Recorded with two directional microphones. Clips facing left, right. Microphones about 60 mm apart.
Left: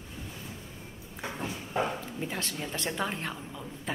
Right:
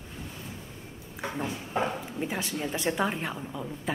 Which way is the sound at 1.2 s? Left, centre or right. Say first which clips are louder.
Right 3 dB; centre.